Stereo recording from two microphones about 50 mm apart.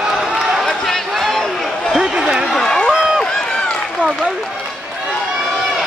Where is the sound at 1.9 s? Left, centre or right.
Centre.